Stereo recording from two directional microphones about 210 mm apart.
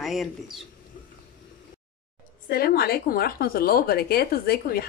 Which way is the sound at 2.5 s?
45° left (ahead or behind).